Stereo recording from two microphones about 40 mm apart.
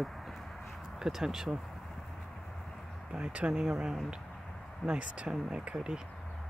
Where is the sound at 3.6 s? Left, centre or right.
Centre.